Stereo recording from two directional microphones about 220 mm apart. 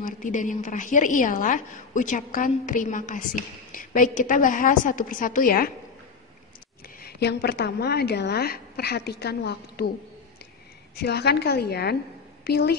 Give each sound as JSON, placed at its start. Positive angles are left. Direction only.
{"t": 0.0, "sound": "a woman's voice", "side_deg": 35}
{"t": 7.0, "sound": "a woman's voice", "side_deg": 50}
{"t": 11.0, "sound": "a woman's voice", "side_deg": 45}